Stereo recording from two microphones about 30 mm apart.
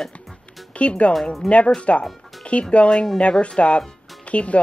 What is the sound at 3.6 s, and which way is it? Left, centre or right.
Speech, left.